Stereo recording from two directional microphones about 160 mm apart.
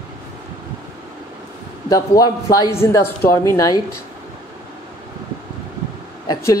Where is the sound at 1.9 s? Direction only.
25° left (ahead or behind).